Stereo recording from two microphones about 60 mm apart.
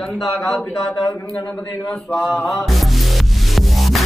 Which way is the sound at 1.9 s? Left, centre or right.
Centre.